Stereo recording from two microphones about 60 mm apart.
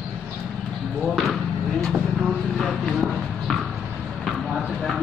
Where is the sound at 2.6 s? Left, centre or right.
Centre.